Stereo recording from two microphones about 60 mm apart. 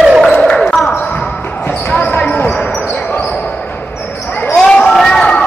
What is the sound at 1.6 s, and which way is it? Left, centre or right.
Basketball bounce, left.